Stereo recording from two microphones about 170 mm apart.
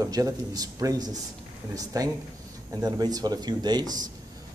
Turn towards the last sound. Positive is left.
turn(degrees=-25)  # may be behind; listen again after turning